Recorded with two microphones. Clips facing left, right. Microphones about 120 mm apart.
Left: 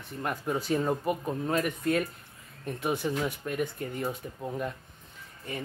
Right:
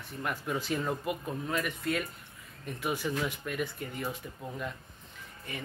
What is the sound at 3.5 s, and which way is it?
Speech, 40° left (ahead or behind).